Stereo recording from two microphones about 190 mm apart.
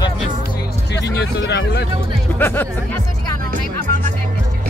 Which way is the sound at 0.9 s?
65° left (ahead or behind).